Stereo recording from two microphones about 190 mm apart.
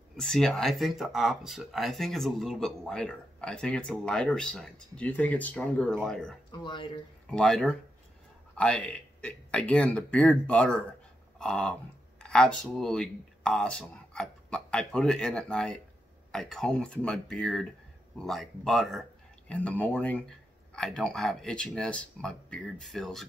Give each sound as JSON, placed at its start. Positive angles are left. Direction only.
{"t": 0.2, "sound": "speech", "side_deg": 5}
{"t": 6.5, "sound": "speech", "side_deg": 25}
{"t": 7.2, "sound": "speech", "side_deg": 5}